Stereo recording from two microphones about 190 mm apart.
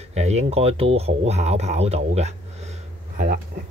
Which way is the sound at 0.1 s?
35° right (ahead or behind).